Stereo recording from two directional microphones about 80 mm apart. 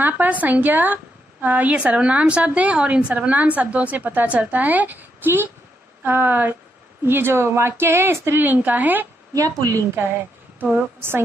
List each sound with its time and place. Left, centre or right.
0.0 s a woman's voice: right
9.3 s speech: right
10.6 s a woman's voice: right